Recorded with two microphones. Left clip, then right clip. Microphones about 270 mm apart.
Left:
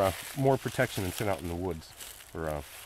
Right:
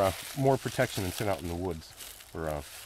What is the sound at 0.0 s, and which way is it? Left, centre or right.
Speech, centre.